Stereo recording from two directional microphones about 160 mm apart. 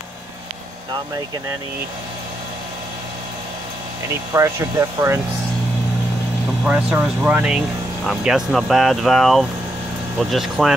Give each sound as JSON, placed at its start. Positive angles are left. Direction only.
{"t": 4.3, "sound": "speech", "side_deg": -20}
{"t": 6.6, "sound": "speech", "side_deg": -5}